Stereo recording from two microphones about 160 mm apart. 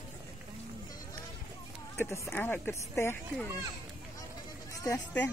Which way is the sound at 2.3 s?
10° left (ahead or behind).